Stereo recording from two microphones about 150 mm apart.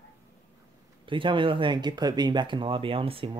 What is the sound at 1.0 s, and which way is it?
Speech, 35° right (ahead or behind).